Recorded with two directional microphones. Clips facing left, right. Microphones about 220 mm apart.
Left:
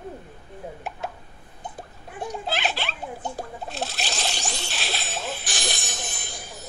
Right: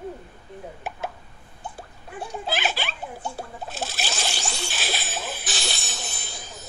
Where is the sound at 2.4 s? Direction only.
Centre (ahead or behind).